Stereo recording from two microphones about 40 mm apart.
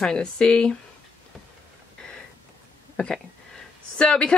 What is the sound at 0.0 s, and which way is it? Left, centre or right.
Speech, centre.